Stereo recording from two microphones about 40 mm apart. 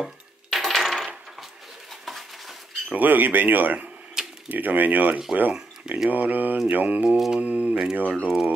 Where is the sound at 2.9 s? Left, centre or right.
Right.